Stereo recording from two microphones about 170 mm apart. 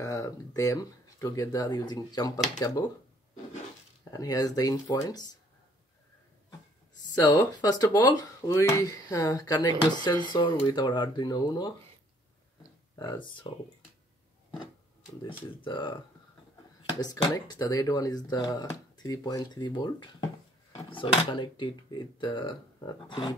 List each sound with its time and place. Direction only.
0.0 s speech: 20° left (ahead or behind)
4.1 s speech: 20° left (ahead or behind)
7.2 s speech: 20° left (ahead or behind)
12.9 s speech: 20° left (ahead or behind)
15.2 s speech: 30° left (ahead or behind)
17.0 s speech: 20° left (ahead or behind)